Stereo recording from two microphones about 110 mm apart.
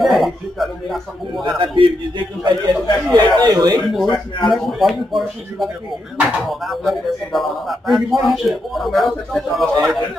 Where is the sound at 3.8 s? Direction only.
Centre (ahead or behind).